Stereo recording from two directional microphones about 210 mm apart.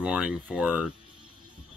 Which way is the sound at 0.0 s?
5° right (ahead or behind).